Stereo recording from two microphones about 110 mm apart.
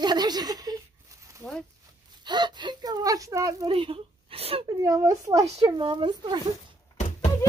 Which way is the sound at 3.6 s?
55° right (ahead or behind).